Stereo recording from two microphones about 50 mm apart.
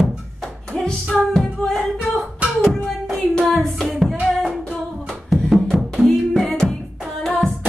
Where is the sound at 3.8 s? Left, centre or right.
Centre.